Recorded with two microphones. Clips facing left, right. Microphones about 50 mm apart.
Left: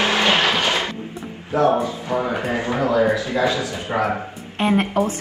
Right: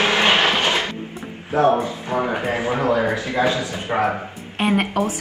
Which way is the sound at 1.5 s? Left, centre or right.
Right.